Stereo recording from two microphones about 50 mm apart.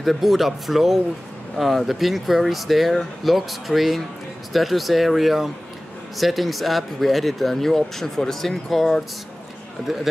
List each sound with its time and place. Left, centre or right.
0.0 s speech: centre